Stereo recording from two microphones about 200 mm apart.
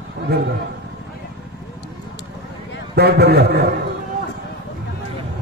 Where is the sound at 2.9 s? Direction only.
55° right (ahead or behind).